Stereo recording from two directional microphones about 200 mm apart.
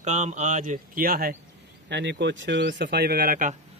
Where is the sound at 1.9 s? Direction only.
60° right (ahead or behind); by 3.5 s 40° right (ahead or behind).